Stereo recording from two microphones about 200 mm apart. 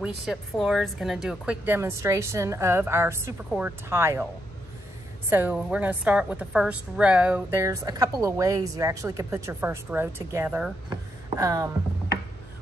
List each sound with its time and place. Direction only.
0.0 s a woman's voice: centre (ahead or behind)
5.3 s a woman's voice: 10° right (ahead or behind)
10.9 s a sound: 20° right (ahead or behind)